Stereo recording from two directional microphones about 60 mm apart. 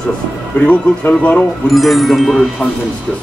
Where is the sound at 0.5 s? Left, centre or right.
Left.